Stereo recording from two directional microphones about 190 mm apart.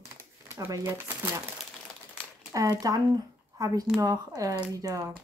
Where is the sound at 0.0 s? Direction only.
15° right (ahead or behind).